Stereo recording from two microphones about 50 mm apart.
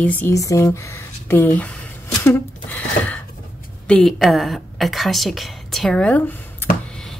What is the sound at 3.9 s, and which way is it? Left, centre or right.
Speech, centre.